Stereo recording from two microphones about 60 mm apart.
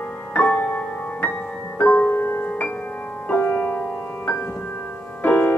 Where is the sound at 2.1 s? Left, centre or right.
Left.